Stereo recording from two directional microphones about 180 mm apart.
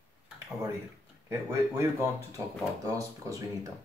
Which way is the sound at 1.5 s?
15° right (ahead or behind).